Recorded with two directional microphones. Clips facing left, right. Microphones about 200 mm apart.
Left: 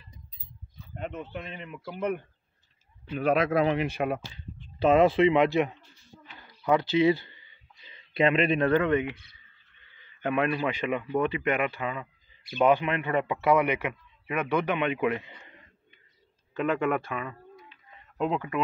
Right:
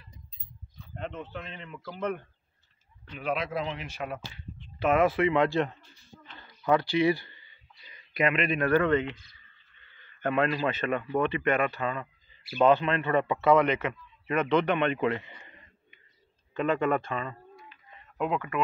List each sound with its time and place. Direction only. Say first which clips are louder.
0.7 s a man's voice: left 1 dB; 10° left (ahead or behind)
3.2 s speech: left 7 dB; 50° left (ahead or behind)
4.7 s speech: left 4 dB; 30° left (ahead or behind)
10.2 s a man's voice: even; 15° left (ahead or behind)
16.5 s speech: even; 10° left (ahead or behind)
18.1 s speech: left 1 dB; 30° left (ahead or behind)